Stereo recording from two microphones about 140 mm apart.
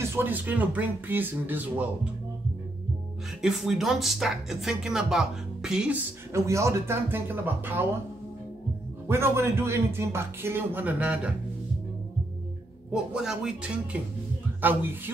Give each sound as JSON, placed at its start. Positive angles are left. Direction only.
{"t": 0.0, "sound": "speech", "side_deg": -15}
{"t": 3.4, "sound": "speech", "side_deg": -5}
{"t": 6.3, "sound": "speech", "side_deg": -20}
{"t": 9.0, "sound": "speech", "side_deg": -15}
{"t": 12.9, "sound": "speech", "side_deg": -5}